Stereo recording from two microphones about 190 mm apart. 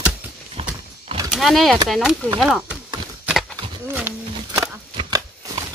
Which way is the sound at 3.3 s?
Centre (ahead or behind).